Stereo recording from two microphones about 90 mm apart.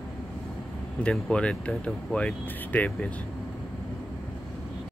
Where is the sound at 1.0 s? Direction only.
10° left (ahead or behind).